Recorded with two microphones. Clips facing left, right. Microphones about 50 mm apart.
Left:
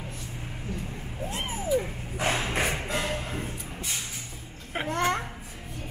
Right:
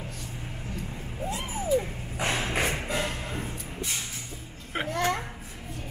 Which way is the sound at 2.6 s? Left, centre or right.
Centre.